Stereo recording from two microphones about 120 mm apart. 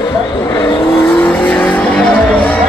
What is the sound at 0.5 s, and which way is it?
Vehicle, 15° left (ahead or behind).